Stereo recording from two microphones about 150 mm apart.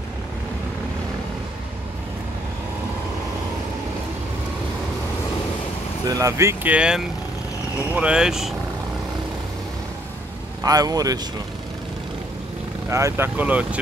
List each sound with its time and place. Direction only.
6.0 s speech: 20° right (ahead or behind); by 8.5 s 5° right (ahead or behind)
10.6 s speech: 25° right (ahead or behind)
12.9 s speech: 20° right (ahead or behind)